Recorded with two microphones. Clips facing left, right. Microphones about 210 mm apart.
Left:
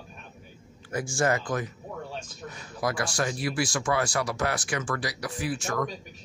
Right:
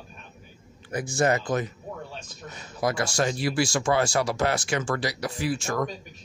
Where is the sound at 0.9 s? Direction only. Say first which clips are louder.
Right 2 dB; 20° right (ahead or behind).